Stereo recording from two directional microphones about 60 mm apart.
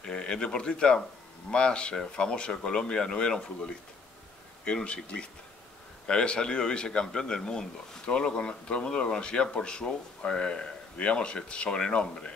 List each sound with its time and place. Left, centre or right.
0.0 s a man's voice: centre